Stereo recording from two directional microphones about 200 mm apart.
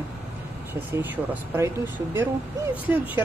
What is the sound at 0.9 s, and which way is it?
Speech, 10° right (ahead or behind).